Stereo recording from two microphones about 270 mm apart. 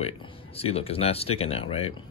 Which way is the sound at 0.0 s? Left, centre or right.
Left.